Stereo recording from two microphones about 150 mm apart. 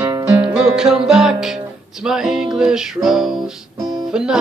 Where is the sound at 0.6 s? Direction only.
5° right (ahead or behind).